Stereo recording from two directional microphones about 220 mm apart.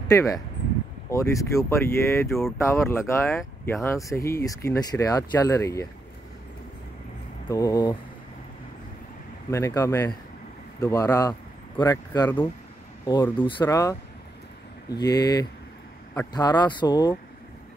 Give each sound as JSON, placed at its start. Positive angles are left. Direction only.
{"t": 0.1, "sound": "speech", "side_deg": 15}
{"t": 7.4, "sound": "speech", "side_deg": 15}
{"t": 9.5, "sound": "speech", "side_deg": 15}